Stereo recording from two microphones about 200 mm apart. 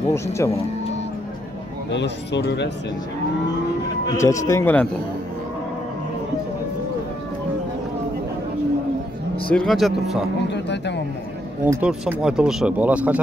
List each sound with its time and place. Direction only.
0.1 s a man's voice: 15° left (ahead or behind)
1.9 s speech: 60° left (ahead or behind)
4.2 s a man's voice: 15° left (ahead or behind)
9.5 s speech: centre (ahead or behind)
10.5 s speech: 60° left (ahead or behind)
11.6 s speech: 10° right (ahead or behind)